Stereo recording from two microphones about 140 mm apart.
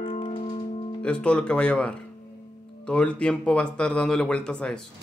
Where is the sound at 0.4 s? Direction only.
55° left (ahead or behind).